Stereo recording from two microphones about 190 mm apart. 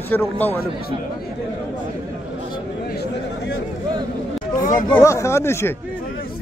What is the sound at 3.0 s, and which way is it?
Chatter, 80° left.